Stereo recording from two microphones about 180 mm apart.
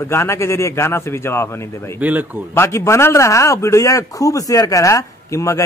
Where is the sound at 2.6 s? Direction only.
15° left (ahead or behind).